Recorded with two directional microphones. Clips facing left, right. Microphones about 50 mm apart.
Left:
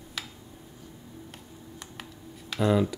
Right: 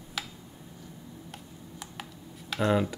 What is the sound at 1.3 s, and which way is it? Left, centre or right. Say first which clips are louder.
Computer keyboard: even; centre.